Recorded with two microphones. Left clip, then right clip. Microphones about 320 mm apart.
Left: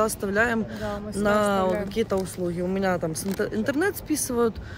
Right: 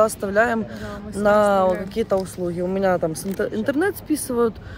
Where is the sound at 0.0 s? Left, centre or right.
Centre.